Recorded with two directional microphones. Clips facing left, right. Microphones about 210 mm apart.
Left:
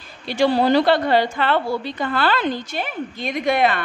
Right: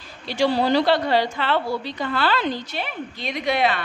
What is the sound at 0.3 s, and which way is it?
A woman's voice, 50° left (ahead or behind).